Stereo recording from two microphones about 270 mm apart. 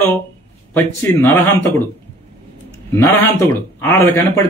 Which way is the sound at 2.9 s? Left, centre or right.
Centre.